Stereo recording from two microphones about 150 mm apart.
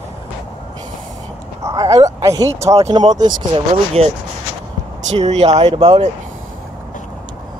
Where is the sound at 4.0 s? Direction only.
40° right (ahead or behind).